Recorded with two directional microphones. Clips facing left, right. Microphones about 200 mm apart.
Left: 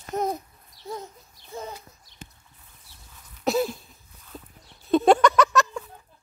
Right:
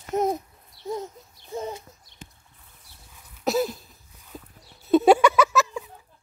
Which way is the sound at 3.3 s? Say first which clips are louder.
Even; centre (ahead or behind).